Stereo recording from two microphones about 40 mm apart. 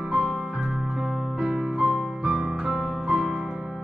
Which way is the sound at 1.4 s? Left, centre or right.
Centre.